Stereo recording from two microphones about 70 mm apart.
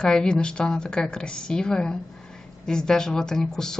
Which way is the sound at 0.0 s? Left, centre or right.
Centre.